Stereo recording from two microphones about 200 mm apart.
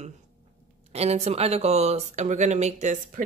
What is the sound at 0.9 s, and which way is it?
Speech, 30° right (ahead or behind).